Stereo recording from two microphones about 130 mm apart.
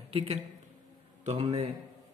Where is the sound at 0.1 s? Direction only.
55° right (ahead or behind).